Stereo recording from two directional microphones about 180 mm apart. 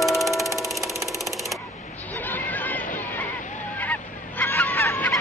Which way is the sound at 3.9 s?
10° left (ahead or behind).